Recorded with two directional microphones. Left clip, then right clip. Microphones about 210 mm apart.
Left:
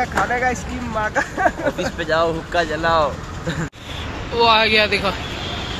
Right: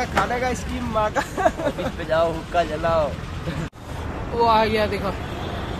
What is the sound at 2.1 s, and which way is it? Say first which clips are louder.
Speech: left 2 dB; 55° left (ahead or behind).